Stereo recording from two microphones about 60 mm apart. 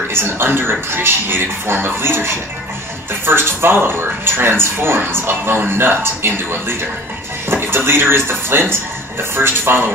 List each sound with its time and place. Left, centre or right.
0.1 s speech: right
7.6 s speech: right